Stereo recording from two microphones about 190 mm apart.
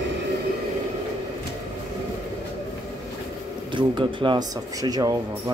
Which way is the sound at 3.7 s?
25° right (ahead or behind).